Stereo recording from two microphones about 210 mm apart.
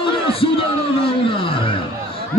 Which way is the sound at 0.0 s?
25° left (ahead or behind).